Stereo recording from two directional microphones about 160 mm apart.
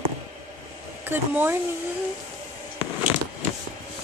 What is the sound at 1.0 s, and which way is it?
Speech, 15° right (ahead or behind).